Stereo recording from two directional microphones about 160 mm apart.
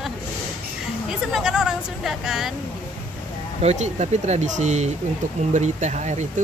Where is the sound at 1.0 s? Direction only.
5° right (ahead or behind).